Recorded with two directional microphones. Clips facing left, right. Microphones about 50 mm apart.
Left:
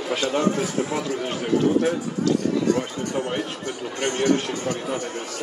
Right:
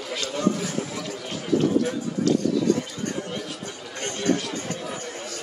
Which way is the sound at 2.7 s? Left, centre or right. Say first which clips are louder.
Left 1 dB; left.